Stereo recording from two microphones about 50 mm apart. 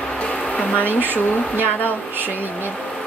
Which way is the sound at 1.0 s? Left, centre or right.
Right.